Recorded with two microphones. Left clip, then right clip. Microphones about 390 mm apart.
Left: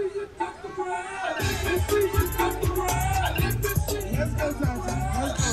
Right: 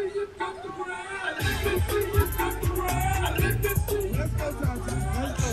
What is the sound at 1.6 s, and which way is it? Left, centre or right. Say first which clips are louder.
Music: left 4 dB; centre.